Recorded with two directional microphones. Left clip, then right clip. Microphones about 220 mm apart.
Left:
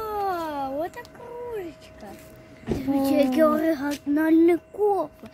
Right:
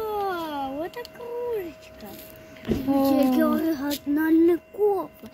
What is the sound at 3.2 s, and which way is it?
A child's voice, 20° left (ahead or behind).